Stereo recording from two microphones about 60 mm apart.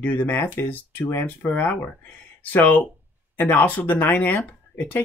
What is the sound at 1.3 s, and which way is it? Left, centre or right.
Speech, left.